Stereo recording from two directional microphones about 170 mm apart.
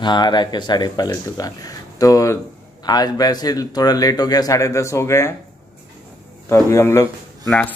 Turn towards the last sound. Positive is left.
turn(degrees=15)  # may be behind; listen again after turning